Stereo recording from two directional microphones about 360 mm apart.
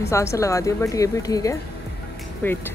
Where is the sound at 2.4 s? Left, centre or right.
Centre.